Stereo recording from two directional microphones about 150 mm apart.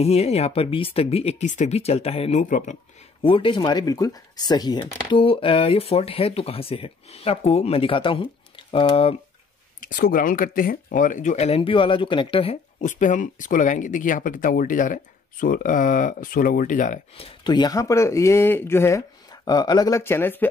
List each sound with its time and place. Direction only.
0.0 s speech: 45° left (ahead or behind)
2.4 s speech: 55° left (ahead or behind)
3.2 s speech: 35° left (ahead or behind)
9.8 s speech: 70° left (ahead or behind); by 12.8 s 40° left (ahead or behind)
12.8 s speech: 55° left (ahead or behind)
17.2 s speech: 35° left (ahead or behind); by 20.4 s 15° left (ahead or behind)